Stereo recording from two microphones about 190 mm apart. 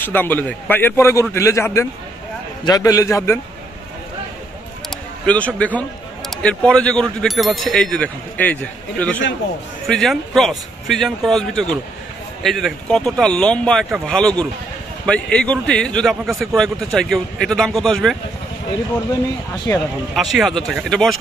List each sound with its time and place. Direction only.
0.0 s a man's voice: 10° left (ahead or behind)
5.2 s a man's voice: 5° left (ahead or behind)
19.7 s a man's voice: 15° left (ahead or behind)
20.2 s a man's voice: centre (ahead or behind)